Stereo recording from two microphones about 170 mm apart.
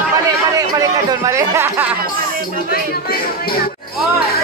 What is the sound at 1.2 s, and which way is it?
Speech, 15° right (ahead or behind).